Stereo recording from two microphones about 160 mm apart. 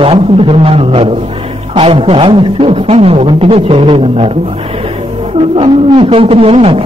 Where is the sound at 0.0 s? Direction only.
35° right (ahead or behind).